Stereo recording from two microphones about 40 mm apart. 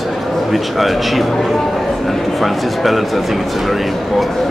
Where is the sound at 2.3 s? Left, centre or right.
Centre.